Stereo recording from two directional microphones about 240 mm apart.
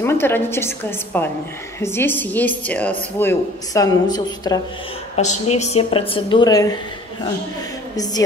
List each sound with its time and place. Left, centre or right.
0.0 s a woman's voice: centre
5.1 s a woman's voice: left
7.9 s a woman's voice: centre